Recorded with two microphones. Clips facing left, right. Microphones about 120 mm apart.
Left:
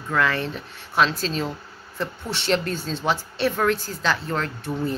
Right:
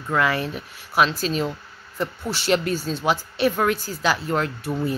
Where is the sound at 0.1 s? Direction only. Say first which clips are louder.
Right 1 dB; 10° right (ahead or behind).